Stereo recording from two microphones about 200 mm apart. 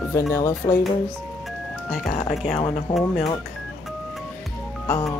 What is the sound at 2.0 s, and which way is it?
Speech, 35° left (ahead or behind).